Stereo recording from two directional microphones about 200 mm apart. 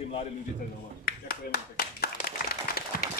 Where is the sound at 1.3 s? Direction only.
50° left (ahead or behind).